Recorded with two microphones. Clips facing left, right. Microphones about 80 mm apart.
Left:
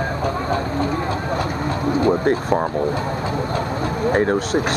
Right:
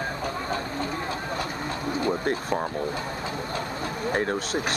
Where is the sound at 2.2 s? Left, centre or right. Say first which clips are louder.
Left 8 dB; left.